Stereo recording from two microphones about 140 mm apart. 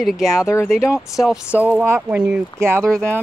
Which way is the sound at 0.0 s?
Centre (ahead or behind).